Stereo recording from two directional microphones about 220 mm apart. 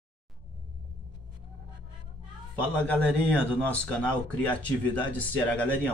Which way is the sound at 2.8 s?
5° left (ahead or behind).